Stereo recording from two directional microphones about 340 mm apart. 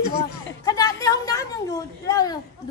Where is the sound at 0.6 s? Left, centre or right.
Centre.